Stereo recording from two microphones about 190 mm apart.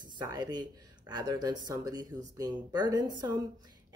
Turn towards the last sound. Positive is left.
turn(degrees=-20)  # may be behind; listen again after turning